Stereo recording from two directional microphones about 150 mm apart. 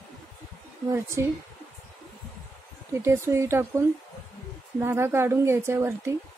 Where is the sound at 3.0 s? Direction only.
20° right (ahead or behind).